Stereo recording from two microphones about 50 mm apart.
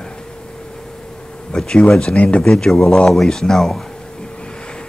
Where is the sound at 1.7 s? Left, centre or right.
Centre.